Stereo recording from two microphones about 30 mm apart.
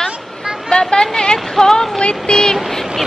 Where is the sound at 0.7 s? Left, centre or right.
Left.